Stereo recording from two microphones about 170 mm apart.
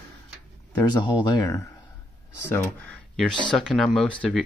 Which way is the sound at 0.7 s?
25° left (ahead or behind).